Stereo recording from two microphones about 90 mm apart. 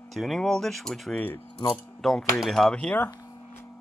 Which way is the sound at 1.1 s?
20° left (ahead or behind).